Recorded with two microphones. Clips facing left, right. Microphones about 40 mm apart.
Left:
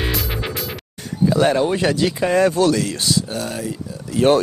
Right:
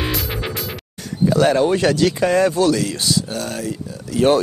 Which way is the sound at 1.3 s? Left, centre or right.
Left.